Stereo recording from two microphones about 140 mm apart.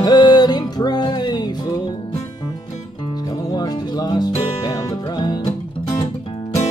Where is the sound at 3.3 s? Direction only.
30° left (ahead or behind).